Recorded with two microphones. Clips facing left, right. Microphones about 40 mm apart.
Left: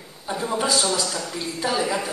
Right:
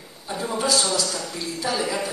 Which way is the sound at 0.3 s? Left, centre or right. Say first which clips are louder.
Left 1 dB; centre.